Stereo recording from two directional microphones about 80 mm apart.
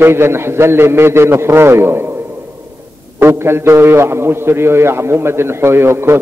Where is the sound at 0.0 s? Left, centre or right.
Right.